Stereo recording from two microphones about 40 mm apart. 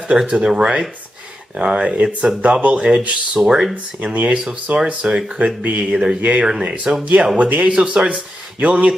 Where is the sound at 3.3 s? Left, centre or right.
Centre.